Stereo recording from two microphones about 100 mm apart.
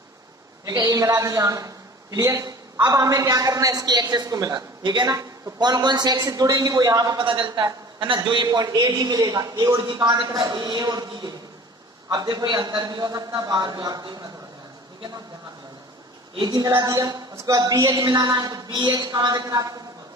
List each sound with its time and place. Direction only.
0.7 s a woman's voice: 35° right (ahead or behind)
7.2 s a man's voice: 55° right (ahead or behind)
8.5 s a woman's voice: 40° right (ahead or behind)
12.1 s a man's voice: 45° right (ahead or behind)
16.3 s a woman's voice: 40° right (ahead or behind)